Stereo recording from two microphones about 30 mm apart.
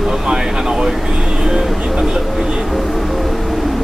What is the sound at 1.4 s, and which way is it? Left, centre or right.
Vehicle, centre.